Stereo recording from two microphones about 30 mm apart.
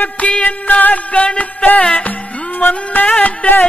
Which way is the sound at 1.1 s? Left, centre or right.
Left.